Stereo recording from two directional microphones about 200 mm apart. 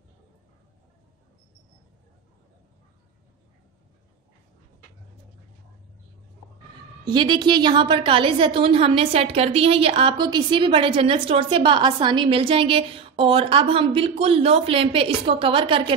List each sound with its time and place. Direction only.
7.1 s a woman's voice: 25° right (ahead or behind)